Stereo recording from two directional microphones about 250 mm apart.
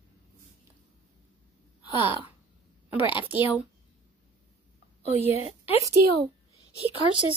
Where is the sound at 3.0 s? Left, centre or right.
Centre.